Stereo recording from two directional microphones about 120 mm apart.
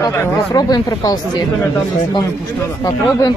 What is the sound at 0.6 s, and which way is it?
Speech, 35° left (ahead or behind).